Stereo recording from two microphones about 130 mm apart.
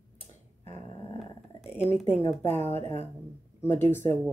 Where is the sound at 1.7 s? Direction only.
15° left (ahead or behind).